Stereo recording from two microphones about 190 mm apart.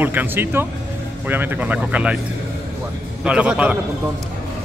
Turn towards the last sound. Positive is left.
turn(degrees=-5)  # may be behind; listen again after turning